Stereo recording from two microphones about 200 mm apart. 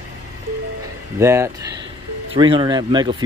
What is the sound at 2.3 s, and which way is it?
Speech, 25° right (ahead or behind).